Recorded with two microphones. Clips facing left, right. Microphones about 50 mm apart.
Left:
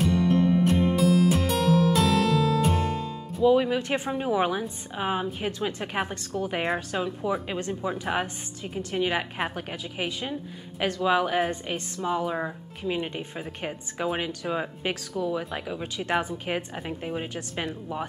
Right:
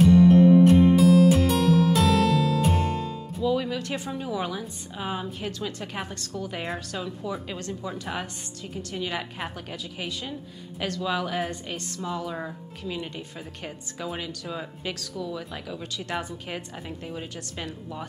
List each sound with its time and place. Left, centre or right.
0.0 s music: centre
3.4 s a woman's voice: left